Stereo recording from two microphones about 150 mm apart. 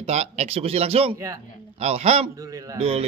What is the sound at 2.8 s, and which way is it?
Speech, 40° right (ahead or behind).